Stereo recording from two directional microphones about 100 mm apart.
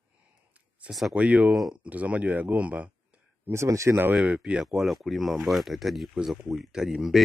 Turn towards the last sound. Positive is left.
turn(degrees=-5)  # may be behind; listen again after turning